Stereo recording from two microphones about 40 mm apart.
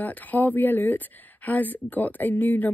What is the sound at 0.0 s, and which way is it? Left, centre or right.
Speech, left.